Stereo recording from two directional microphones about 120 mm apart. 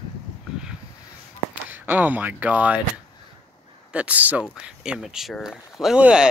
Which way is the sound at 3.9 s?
10° right (ahead or behind).